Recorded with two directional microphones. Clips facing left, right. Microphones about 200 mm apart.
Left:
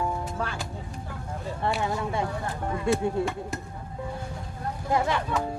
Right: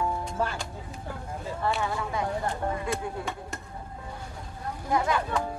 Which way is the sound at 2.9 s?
25° left (ahead or behind).